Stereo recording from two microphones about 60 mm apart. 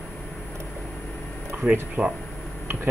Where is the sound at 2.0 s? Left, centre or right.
Right.